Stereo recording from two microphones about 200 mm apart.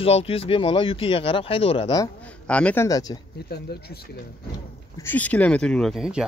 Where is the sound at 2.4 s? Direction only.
5° left (ahead or behind).